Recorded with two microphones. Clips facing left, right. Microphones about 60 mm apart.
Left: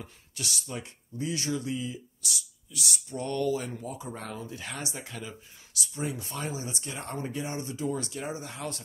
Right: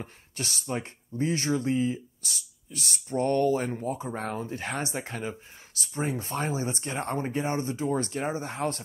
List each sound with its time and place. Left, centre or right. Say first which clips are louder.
0.0 s speech: right 3 dB; right